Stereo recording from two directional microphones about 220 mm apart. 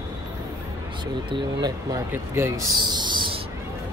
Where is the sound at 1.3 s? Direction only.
15° right (ahead or behind).